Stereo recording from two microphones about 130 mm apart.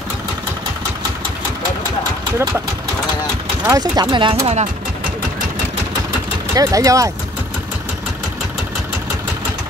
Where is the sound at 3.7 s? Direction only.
30° right (ahead or behind).